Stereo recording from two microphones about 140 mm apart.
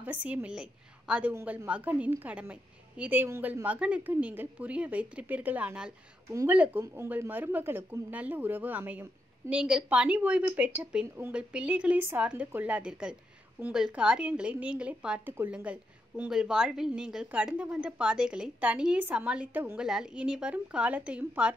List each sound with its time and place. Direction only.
0.0 s a woman's voice: 10° right (ahead or behind)
6.2 s a woman's voice: 20° right (ahead or behind)